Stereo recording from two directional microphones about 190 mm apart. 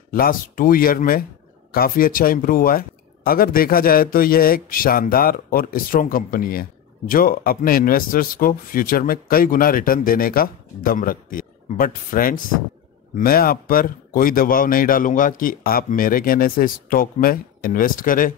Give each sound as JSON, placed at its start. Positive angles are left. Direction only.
{"t": 0.1, "sound": "speech", "side_deg": 50}